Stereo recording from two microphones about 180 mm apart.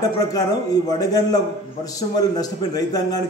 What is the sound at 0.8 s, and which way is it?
A man's voice, 20° left (ahead or behind).